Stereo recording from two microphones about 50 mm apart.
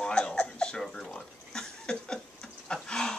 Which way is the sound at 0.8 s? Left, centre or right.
Centre.